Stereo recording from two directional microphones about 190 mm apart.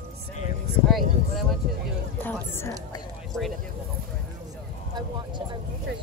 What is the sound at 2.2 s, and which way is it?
Speech, 10° left (ahead or behind).